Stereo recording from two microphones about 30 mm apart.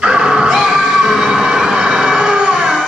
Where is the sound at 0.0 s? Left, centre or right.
Right.